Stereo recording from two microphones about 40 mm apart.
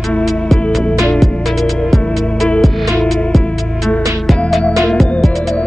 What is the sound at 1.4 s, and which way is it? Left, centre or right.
Heart sounds, centre.